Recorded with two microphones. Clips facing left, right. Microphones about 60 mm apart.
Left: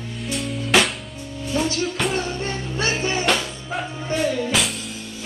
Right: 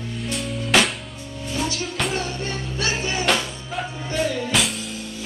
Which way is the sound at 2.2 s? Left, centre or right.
Left.